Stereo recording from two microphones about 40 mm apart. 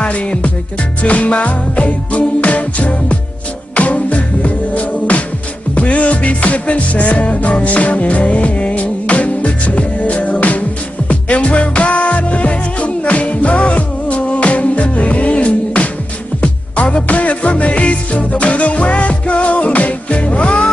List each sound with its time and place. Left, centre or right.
0.0 s music: left